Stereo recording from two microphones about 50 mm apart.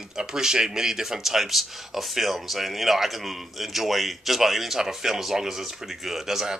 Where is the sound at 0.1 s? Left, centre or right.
Centre.